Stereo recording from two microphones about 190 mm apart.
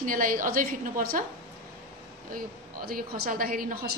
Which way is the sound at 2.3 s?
50° right (ahead or behind).